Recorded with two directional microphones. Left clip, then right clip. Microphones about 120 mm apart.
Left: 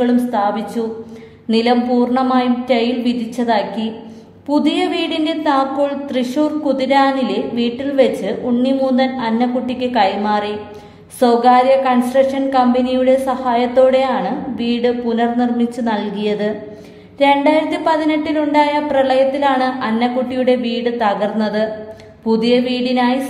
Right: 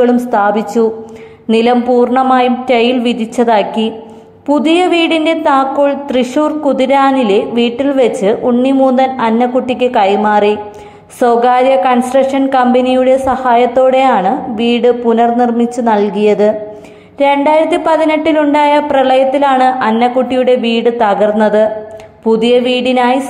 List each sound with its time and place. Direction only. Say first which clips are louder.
0.0 s a woman's voice: right 6 dB; 45° right (ahead or behind)
8.6 s a woman's voice: right 5 dB; 40° right (ahead or behind)